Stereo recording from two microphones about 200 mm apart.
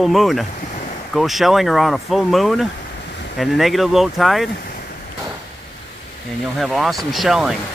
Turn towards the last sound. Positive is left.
turn(degrees=0)  # may be behind; listen again after turning